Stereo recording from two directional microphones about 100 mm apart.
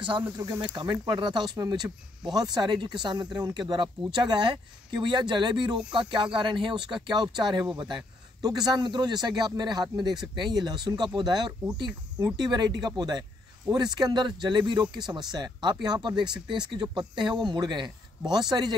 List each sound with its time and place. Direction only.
0.7 s speech: 45° right (ahead or behind)